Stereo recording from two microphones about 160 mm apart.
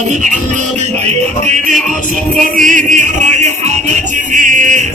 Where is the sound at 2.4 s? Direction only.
55° right (ahead or behind).